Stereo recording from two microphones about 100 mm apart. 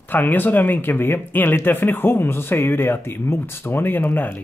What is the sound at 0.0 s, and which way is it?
Speech, 20° left (ahead or behind).